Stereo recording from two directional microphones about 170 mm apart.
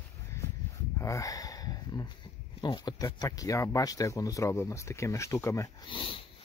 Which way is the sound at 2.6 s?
25° left (ahead or behind).